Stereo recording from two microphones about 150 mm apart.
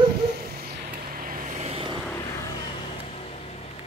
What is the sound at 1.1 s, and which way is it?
Vehicle, 65° right (ahead or behind).